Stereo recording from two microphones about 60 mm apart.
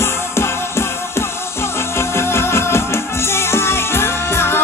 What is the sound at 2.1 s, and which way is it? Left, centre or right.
Music, left.